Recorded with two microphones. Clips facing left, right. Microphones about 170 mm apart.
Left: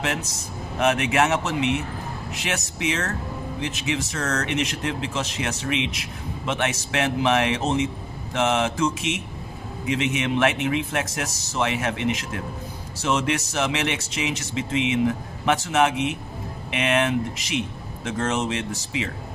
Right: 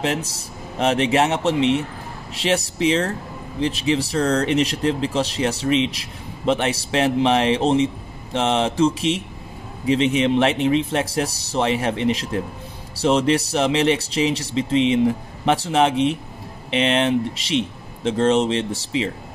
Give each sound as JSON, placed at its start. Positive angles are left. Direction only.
{"t": 0.0, "sound": "speech", "side_deg": -30}